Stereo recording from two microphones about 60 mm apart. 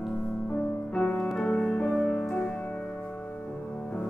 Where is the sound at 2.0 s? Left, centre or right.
Centre.